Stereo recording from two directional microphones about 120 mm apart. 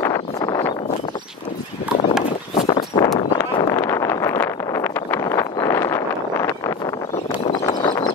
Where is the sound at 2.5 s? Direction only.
40° left (ahead or behind); by 5.4 s 25° left (ahead or behind).